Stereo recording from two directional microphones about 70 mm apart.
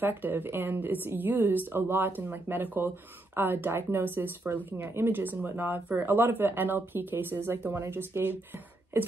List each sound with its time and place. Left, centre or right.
0.0 s speech: right